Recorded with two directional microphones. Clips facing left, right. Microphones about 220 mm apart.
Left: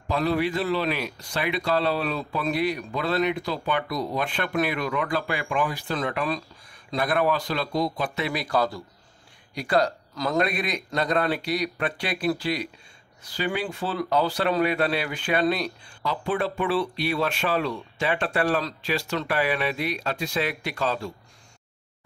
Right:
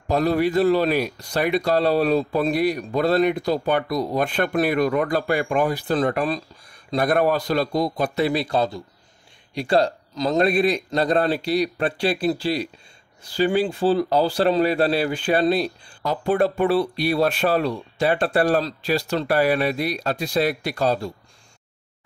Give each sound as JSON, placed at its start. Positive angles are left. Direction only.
{"t": 0.1, "sound": "speech", "side_deg": -45}
{"t": 16.0, "sound": "speech", "side_deg": -45}